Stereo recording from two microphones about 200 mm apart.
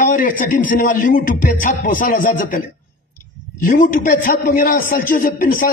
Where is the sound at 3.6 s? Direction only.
45° left (ahead or behind).